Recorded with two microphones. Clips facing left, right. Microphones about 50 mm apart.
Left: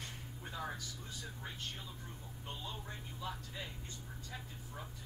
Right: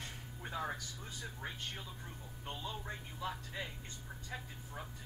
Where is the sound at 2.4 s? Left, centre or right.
Right.